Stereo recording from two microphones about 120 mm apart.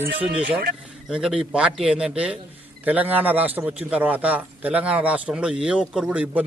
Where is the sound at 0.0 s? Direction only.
15° right (ahead or behind).